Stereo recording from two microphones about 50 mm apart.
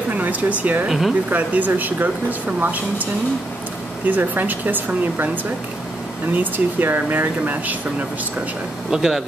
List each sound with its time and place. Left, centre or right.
0.1 s a sound: right
0.8 s speech: centre
1.3 s speech: right
4.1 s speech: right
8.9 s speech: centre